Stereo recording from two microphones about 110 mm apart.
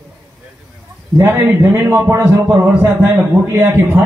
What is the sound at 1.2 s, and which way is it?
A man's voice, 20° right (ahead or behind).